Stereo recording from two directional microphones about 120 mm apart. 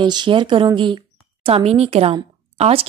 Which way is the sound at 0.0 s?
40° right (ahead or behind).